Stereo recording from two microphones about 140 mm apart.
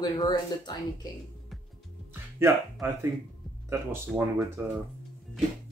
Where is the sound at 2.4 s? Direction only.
20° right (ahead or behind).